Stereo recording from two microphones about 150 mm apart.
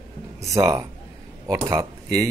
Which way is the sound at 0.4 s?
20° right (ahead or behind).